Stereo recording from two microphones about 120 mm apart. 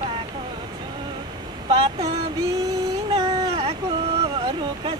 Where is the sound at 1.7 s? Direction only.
50° right (ahead or behind).